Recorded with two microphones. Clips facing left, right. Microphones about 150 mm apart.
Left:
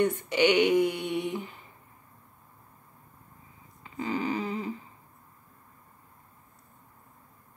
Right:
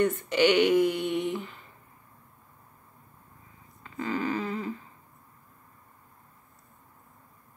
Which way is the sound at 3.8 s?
15° left (ahead or behind).